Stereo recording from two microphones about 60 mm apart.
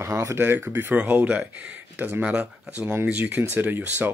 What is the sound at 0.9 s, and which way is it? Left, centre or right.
Speech, right.